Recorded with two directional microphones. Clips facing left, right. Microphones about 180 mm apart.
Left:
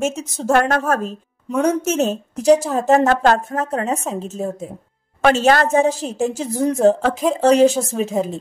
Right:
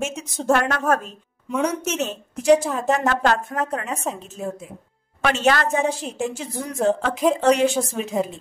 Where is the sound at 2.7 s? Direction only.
40° left (ahead or behind).